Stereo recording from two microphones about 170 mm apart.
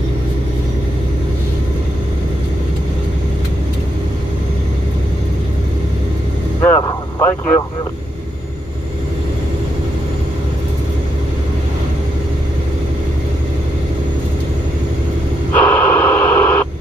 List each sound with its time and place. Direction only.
6.6 s vehicle: 10° left (ahead or behind)
15.5 s radio: 10° left (ahead or behind)